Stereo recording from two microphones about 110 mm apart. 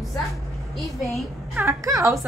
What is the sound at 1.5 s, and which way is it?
Speech, 25° right (ahead or behind).